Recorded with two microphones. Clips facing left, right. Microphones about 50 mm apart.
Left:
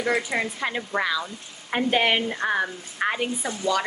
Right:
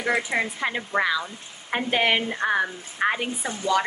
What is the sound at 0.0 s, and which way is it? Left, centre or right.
Speech, centre.